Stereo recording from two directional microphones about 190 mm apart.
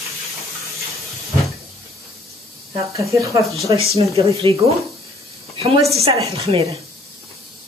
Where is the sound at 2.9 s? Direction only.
15° right (ahead or behind).